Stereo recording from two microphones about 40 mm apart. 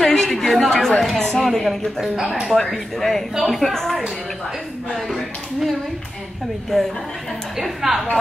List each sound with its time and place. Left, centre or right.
0.0 s a woman's voice: centre
2.1 s a woman's voice: centre
2.7 s a woman's voice: centre
7.5 s a woman's voice: centre